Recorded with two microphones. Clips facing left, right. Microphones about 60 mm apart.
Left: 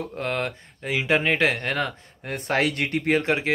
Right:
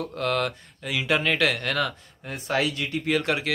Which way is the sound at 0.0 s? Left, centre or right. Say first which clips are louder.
Right 2 dB; left.